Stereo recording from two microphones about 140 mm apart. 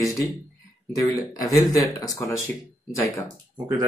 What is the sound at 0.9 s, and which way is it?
Speech, 25° left (ahead or behind).